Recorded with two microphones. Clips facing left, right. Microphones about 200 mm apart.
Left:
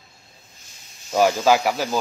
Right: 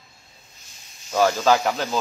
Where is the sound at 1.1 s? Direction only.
15° left (ahead or behind).